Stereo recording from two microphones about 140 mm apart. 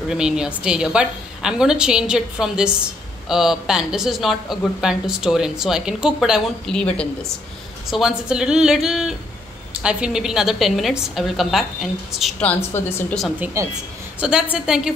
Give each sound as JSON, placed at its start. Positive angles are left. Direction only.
{"t": 0.1, "sound": "speech", "side_deg": -5}
{"t": 7.9, "sound": "speech", "side_deg": -5}
{"t": 12.7, "sound": "a woman's voice", "side_deg": 15}
{"t": 13.6, "sound": "speech", "side_deg": -20}
{"t": 14.2, "sound": "speech", "side_deg": -5}